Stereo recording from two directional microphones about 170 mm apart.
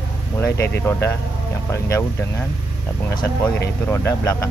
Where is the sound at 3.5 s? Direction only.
15° left (ahead or behind).